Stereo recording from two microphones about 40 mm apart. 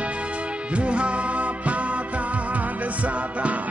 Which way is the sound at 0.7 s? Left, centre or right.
Right.